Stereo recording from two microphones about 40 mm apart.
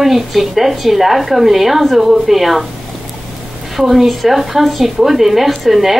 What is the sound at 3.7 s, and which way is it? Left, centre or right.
Speech, centre.